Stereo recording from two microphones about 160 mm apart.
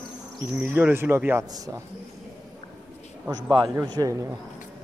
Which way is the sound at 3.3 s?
25° right (ahead or behind).